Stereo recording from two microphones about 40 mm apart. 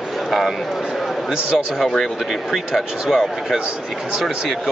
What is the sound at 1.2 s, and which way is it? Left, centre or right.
Speech, centre.